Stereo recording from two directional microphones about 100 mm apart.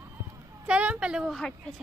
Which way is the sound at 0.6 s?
15° right (ahead or behind).